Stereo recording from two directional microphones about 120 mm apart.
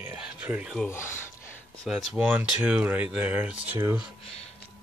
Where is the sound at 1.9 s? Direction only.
10° right (ahead or behind).